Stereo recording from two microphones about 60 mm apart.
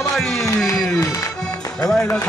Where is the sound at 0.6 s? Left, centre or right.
Centre.